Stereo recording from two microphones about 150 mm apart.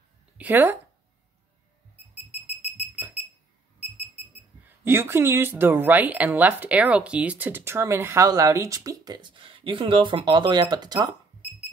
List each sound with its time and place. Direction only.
0.4 s speech: 10° right (ahead or behind)
2.4 s a sound: 5° right (ahead or behind)
4.8 s speech: 15° right (ahead or behind)